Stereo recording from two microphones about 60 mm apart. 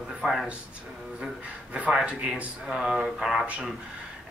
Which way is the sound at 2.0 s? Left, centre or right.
Centre.